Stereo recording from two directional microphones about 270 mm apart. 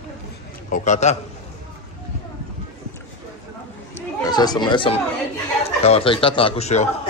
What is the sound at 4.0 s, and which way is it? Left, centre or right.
Speech, centre.